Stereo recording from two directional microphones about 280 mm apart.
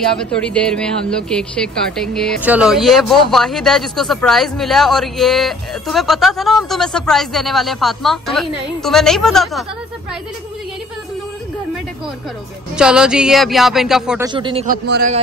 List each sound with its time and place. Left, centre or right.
0.0 s speech: centre
12.7 s speech: centre
14.2 s speech: centre
14.7 s a man's voice: right